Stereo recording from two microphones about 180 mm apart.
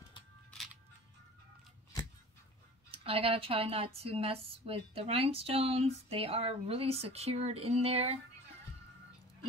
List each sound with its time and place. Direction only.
2.9 s speech: 30° right (ahead or behind)